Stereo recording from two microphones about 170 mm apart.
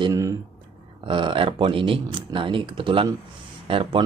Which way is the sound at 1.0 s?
30° right (ahead or behind).